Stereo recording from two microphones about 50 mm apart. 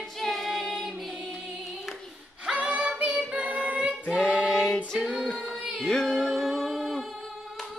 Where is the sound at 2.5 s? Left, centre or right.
Right.